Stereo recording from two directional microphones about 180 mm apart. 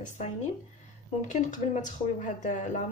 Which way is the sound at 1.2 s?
45° left (ahead or behind).